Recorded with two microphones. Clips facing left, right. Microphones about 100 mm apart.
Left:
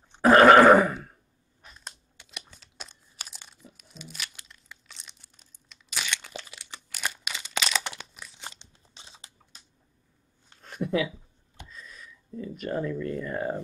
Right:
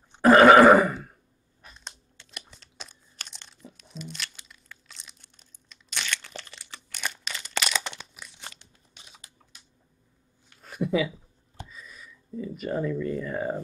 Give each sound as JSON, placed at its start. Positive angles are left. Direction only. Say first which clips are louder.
{"t": 0.2, "sound": "burping", "louder": "right 1 dB", "side_deg": 0}
{"t": 2.3, "sound": "crunch", "louder": "even", "side_deg": 0}
{"t": 8.5, "sound": "crunch", "louder": "left 2 dB", "side_deg": 25}
{"t": 10.6, "sound": "a sound", "louder": "right 2 dB", "side_deg": -5}